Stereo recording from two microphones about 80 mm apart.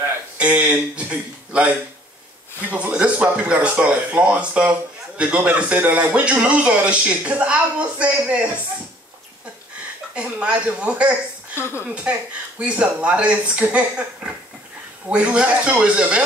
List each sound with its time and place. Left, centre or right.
0.4 s speech: centre
10.1 s speech: centre